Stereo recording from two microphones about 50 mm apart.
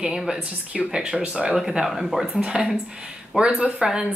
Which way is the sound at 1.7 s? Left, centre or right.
Centre.